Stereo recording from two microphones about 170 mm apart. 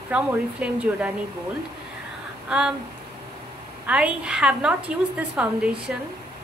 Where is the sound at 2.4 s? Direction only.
5° right (ahead or behind).